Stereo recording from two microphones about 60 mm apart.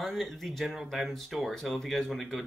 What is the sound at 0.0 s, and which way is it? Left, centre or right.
Speech, centre.